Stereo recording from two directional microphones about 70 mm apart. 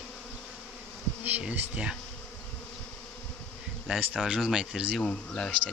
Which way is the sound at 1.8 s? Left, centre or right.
Centre.